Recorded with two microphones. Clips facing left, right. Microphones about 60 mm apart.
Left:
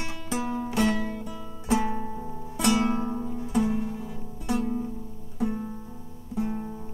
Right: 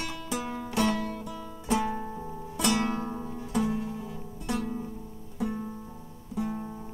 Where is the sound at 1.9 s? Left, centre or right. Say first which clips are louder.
Left 2 dB; centre.